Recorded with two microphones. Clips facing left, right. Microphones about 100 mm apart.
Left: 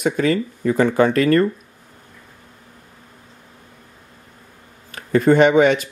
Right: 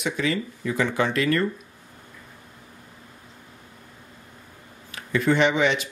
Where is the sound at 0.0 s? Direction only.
45° left (ahead or behind).